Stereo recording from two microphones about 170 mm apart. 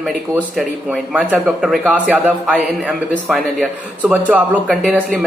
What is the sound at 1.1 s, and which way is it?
A man's voice, 10° right (ahead or behind).